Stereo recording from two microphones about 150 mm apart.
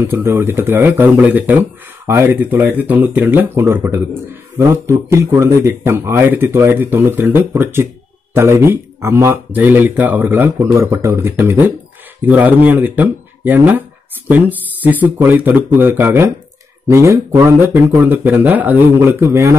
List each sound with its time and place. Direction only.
0.0 s speech: 15° right (ahead or behind)